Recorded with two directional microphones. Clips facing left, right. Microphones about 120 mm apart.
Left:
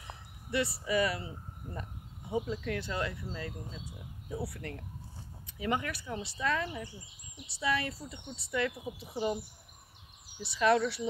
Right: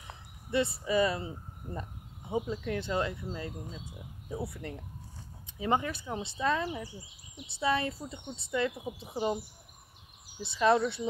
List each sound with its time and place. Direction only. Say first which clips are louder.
0.5 s speech: right 2 dB; 25° right (ahead or behind)
4.4 s speech: right 1 dB; 15° right (ahead or behind)
10.4 s speech: right 1 dB; 25° right (ahead or behind)